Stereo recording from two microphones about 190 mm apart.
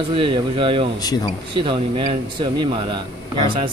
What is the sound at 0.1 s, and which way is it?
Speech, 25° right (ahead or behind).